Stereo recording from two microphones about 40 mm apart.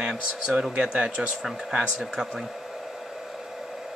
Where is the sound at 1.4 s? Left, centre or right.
Centre.